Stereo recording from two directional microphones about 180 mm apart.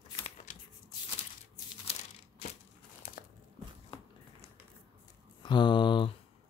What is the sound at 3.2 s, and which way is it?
Crumpling, 55° left (ahead or behind).